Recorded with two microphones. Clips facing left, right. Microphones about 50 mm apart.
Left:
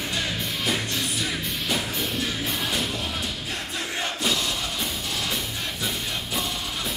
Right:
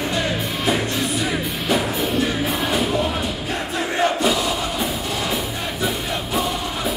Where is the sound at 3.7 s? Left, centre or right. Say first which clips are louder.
Right 11 dB; centre.